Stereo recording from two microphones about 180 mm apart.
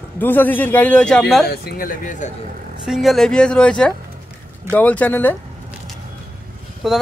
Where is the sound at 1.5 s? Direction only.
60° left (ahead or behind).